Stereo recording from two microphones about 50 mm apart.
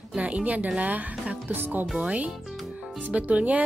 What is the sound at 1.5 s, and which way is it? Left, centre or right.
Speech, right.